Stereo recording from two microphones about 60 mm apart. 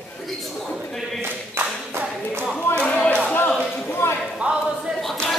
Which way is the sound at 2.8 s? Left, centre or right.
Centre.